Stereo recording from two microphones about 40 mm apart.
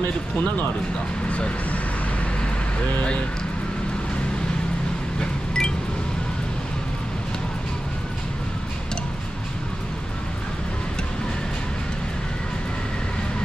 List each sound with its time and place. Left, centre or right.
1.3 s speech: left
5.2 s wind chime: left